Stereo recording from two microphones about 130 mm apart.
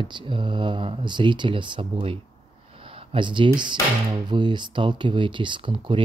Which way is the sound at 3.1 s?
40° right (ahead or behind).